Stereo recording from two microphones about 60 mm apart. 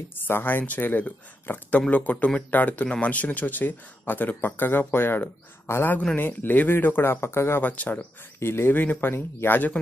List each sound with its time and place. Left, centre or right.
0.1 s speech: left
7.6 s speech: left
8.4 s speech: left